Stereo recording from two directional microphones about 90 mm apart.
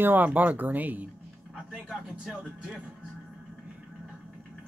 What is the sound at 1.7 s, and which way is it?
Speech, 5° right (ahead or behind).